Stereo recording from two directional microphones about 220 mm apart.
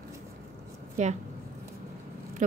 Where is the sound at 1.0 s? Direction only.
35° right (ahead or behind).